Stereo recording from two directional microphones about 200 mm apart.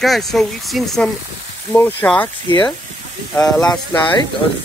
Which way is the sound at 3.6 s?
20° left (ahead or behind).